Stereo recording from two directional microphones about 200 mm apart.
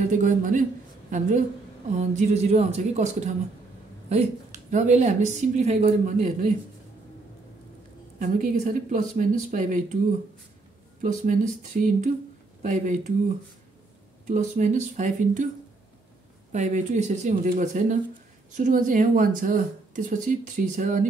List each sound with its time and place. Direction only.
0.0 s speech: 40° right (ahead or behind)
2.0 s speech: 35° right (ahead or behind)
4.6 s speech: 35° right (ahead or behind)
8.2 s speech: 40° right (ahead or behind)
11.0 s speech: 40° right (ahead or behind)
14.2 s speech: 40° right (ahead or behind)
16.5 s speech: 35° right (ahead or behind)